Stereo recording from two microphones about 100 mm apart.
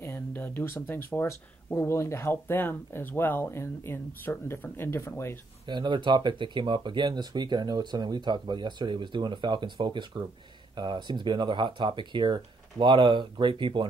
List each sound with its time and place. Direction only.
0.0 s speech: 20° left (ahead or behind)
5.7 s speech: 50° right (ahead or behind)